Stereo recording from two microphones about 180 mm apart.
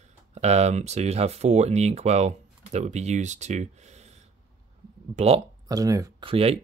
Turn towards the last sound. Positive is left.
turn(degrees=-35)  # may be behind; listen again after turning